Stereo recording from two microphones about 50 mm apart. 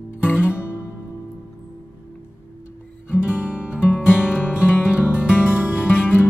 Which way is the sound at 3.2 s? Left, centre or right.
Right.